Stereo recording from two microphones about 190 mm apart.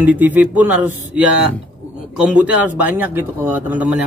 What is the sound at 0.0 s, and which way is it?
A man's voice, 10° right (ahead or behind).